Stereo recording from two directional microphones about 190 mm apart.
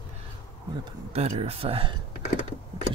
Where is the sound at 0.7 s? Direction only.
25° right (ahead or behind).